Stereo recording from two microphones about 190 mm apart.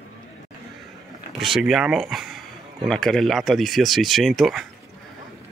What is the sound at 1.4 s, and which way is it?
Speech, centre (ahead or behind).